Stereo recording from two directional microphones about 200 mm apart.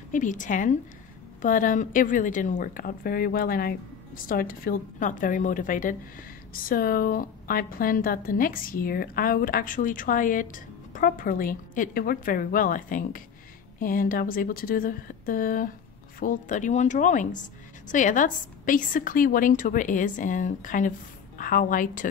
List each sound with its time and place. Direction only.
0.1 s a woman's voice: 40° left (ahead or behind)